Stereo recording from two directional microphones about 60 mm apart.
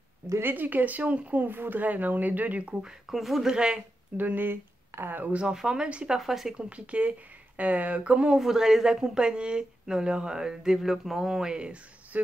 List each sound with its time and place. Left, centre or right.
0.4 s speech: right
3.1 s speech: centre
3.5 s speech: centre
4.2 s speech: right
5.4 s speech: centre
6.1 s speech: centre
6.5 s speech: centre
8.4 s speech: centre